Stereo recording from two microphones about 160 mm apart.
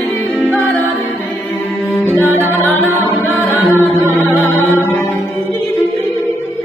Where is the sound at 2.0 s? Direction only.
15° left (ahead or behind).